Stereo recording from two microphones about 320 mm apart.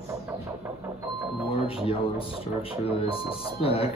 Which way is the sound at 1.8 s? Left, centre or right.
Centre.